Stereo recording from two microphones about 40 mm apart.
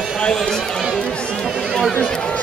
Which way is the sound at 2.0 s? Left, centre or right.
Left.